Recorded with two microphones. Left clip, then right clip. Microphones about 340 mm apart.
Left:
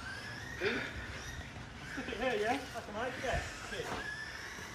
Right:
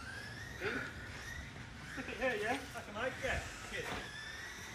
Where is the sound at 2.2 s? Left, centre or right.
Left.